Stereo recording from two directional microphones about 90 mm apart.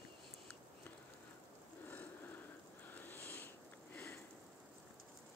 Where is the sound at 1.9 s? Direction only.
20° left (ahead or behind).